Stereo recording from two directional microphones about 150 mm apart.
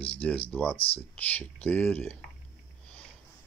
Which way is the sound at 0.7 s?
40° left (ahead or behind).